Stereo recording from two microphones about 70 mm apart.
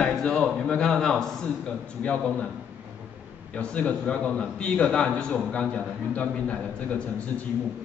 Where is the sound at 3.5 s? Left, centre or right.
Centre.